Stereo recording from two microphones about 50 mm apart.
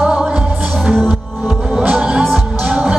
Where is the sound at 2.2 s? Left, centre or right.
Centre.